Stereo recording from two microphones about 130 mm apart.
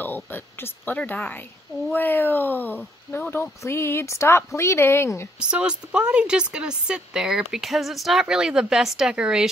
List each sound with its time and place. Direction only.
0.0 s speech: 15° left (ahead or behind)
5.4 s speech: 5° right (ahead or behind)